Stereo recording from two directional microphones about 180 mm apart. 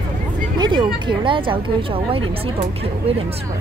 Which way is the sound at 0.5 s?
25° right (ahead or behind).